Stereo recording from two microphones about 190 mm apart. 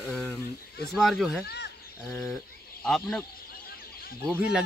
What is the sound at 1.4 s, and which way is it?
Speech, 60° left (ahead or behind).